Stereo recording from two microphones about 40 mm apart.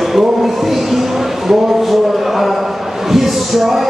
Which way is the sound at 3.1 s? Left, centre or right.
Centre.